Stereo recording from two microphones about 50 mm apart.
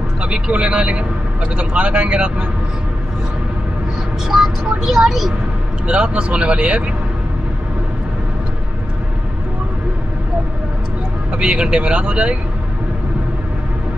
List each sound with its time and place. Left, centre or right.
0.2 s speech: right
4.3 s speech: centre
5.9 s speech: right
11.3 s speech: centre